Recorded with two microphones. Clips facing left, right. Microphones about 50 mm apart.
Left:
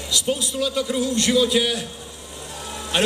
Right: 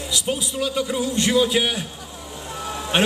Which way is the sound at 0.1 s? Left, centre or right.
Centre.